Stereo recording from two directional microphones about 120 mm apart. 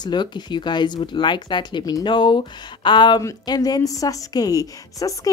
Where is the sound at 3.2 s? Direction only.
30° left (ahead or behind).